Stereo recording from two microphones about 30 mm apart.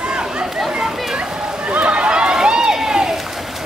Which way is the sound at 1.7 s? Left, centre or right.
Right.